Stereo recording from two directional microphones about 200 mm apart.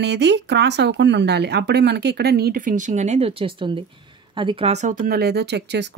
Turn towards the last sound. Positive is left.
turn(degrees=-55)  # may be behind; listen again after turning